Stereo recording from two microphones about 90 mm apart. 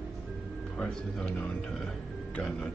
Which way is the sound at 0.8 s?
10° left (ahead or behind).